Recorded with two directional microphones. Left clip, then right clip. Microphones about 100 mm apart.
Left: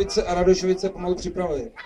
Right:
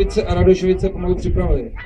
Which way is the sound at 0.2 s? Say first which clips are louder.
Right 4 dB; 30° right (ahead or behind).